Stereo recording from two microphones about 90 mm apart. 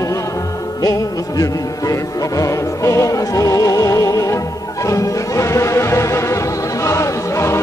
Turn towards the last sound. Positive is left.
turn(degrees=30)  # may be behind; listen again after turning